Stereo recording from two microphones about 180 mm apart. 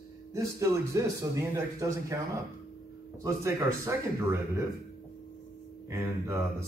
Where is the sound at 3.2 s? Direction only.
15° right (ahead or behind).